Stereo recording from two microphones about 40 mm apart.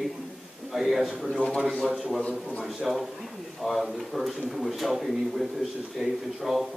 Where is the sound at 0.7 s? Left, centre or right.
Centre.